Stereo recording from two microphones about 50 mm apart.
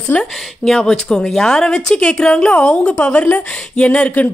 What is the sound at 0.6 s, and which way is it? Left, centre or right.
A woman's voice, centre.